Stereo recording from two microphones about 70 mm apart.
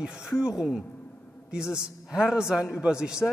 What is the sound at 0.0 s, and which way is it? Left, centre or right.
A woman's voice, centre.